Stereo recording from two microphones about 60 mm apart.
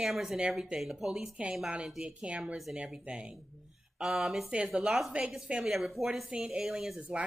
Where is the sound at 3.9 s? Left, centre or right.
Centre.